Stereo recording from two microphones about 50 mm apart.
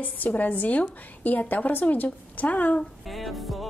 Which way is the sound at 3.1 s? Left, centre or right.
Centre.